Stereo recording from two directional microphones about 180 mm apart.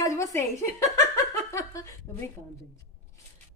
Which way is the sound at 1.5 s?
15° left (ahead or behind).